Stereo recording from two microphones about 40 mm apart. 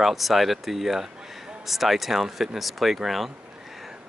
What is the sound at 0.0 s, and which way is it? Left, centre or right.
Speech, centre.